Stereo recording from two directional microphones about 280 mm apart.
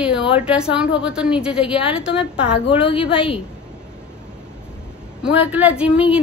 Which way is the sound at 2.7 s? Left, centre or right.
Centre.